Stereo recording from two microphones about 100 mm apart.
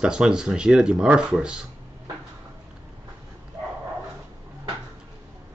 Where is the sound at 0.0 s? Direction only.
10° right (ahead or behind).